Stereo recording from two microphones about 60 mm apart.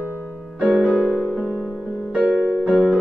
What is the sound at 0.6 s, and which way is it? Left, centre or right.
Music, centre.